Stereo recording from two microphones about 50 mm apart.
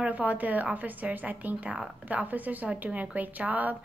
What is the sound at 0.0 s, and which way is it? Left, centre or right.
A woman's voice, right.